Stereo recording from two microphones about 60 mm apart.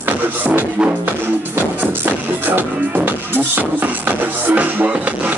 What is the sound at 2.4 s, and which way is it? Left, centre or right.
Music, right.